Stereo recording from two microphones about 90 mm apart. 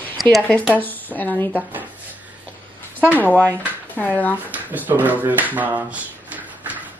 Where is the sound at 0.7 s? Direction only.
20° left (ahead or behind).